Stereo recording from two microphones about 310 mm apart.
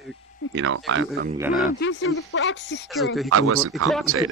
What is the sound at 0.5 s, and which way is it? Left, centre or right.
Speech, right.